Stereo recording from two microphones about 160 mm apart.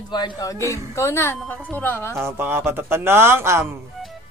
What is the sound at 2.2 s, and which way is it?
A man's voice, 15° right (ahead or behind).